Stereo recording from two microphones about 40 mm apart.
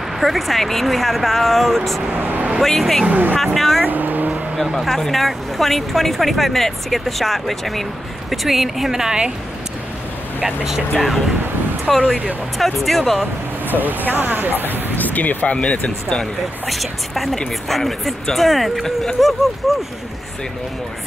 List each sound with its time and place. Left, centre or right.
0.2 s speech: centre
2.1 s speech: right
2.6 s speech: centre
3.1 s speech: right
3.5 s speech: centre
3.8 s vehicle: right
4.7 s speech: centre
10.4 s speech: centre
12.0 s speech: right
12.5 s speech: centre
13.7 s speech: right
15.0 s music: left
15.5 s speech: left
16.6 s speech: centre